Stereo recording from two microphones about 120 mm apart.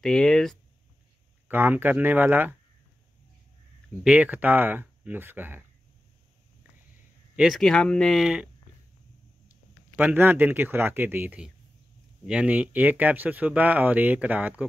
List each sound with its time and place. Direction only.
0.0 s speech: 5° left (ahead or behind)
1.5 s speech: 15° right (ahead or behind)
4.0 s speech: 10° right (ahead or behind)
7.3 s speech: centre (ahead or behind)
9.5 s speech: 15° right (ahead or behind)